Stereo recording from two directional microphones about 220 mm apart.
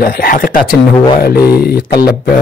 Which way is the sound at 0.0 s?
40° left (ahead or behind).